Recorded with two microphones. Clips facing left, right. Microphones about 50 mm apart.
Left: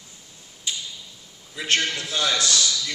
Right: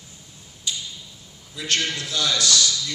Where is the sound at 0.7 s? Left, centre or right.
Left.